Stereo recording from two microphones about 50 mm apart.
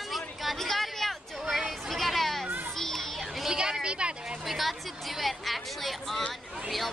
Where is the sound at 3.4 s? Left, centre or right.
Centre.